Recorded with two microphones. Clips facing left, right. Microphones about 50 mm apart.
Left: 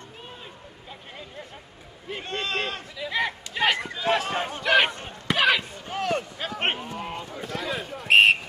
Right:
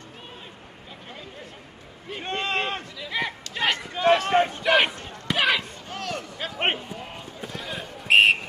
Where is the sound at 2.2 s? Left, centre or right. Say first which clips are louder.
Right 3 dB; right.